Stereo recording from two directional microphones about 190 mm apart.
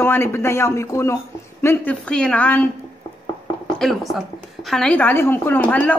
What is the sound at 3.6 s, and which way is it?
A woman's voice, centre (ahead or behind).